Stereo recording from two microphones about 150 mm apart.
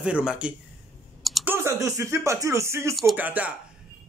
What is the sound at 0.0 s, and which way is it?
Speech, 5° right (ahead or behind).